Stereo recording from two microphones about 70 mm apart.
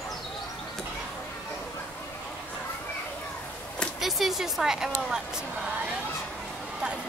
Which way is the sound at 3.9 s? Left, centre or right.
Centre.